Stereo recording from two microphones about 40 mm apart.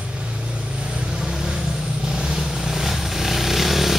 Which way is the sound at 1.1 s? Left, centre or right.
Centre.